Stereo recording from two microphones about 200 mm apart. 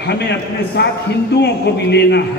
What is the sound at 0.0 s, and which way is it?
A man's voice, 60° left (ahead or behind).